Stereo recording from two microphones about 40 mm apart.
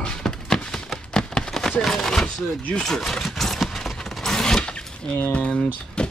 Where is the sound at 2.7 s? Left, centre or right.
Centre.